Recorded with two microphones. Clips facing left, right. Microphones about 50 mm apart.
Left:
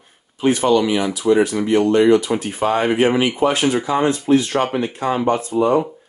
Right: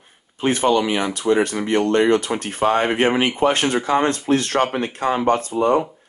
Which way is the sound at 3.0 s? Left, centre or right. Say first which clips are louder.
Left 1 dB; right.